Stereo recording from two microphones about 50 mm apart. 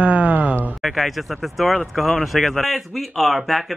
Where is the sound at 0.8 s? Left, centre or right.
Centre.